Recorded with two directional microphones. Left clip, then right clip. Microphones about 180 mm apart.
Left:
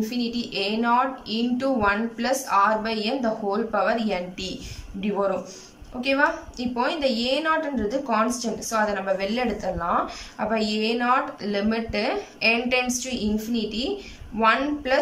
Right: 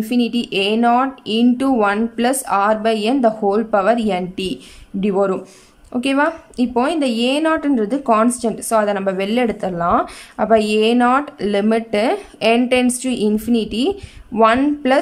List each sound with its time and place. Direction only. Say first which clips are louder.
0.1 s a woman's voice: right 9 dB; 45° right (ahead or behind)